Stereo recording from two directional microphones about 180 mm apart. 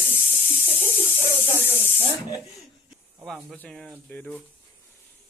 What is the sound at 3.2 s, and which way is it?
Speech, 5° left (ahead or behind).